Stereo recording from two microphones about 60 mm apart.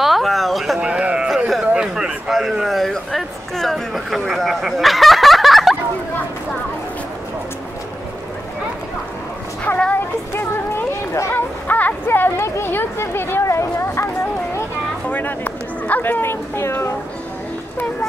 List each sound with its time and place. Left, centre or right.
0.0 s speech: centre
0.7 s a man's voice: centre
9.9 s a sound: left
11.3 s speech: left
13.4 s a sound: left
15.0 s speech: left